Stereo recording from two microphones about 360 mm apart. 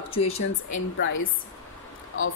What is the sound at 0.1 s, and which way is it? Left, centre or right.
Speech, centre.